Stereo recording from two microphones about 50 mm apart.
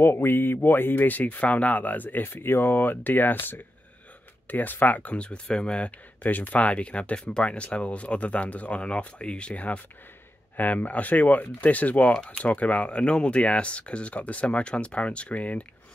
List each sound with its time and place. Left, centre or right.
0.0 s speech: left; by 5.9 s centre
5.9 s speech: left